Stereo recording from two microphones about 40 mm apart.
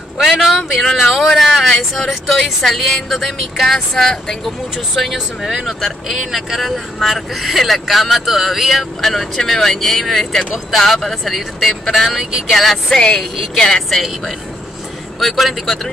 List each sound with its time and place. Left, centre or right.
0.2 s vehicle: centre
0.9 s a sound: centre
2.2 s speech: centre
5.4 s speech: centre
12.9 s speech: centre
15.1 s speech: centre